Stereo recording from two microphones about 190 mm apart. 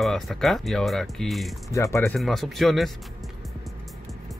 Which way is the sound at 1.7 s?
15° left (ahead or behind).